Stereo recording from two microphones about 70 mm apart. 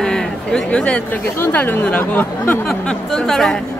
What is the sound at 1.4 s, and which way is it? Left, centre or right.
Speech, left.